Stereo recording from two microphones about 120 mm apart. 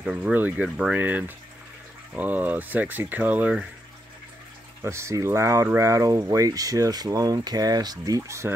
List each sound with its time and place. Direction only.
0.0 s speech: 10° right (ahead or behind)
4.8 s speech: 25° right (ahead or behind)